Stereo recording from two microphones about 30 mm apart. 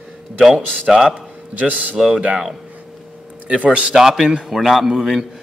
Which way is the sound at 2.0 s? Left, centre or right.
Centre.